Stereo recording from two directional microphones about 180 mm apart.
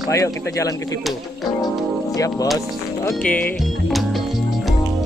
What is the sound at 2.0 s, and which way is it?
Speech, 20° left (ahead or behind).